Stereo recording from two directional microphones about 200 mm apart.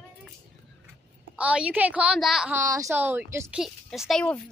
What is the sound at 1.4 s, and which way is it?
Speech, 5° right (ahead or behind).